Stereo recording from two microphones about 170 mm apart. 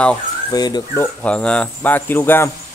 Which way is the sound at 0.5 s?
25° left (ahead or behind).